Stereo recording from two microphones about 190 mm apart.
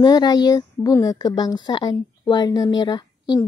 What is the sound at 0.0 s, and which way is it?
Speech, 20° left (ahead or behind).